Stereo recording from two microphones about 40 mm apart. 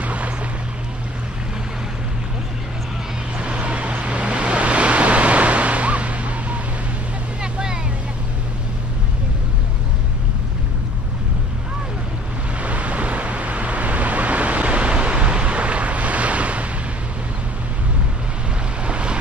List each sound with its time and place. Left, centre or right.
0.0 s vehicle: right
3.3 s vehicle: right
7.5 s vehicle: right
12.6 s vehicle: right
18.9 s boat: right